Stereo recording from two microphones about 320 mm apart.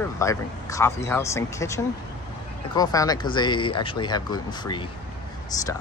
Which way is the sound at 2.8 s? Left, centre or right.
Centre.